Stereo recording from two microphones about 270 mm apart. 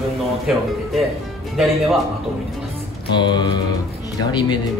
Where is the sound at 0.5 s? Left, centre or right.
Centre.